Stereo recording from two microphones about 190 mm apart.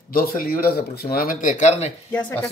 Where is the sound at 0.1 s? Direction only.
50° left (ahead or behind).